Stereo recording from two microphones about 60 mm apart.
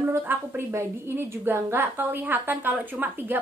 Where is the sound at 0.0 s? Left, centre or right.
Right.